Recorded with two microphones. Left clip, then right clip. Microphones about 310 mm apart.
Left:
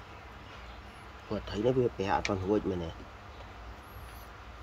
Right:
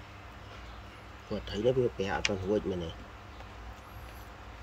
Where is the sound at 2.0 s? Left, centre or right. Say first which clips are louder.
Left 1 dB; centre.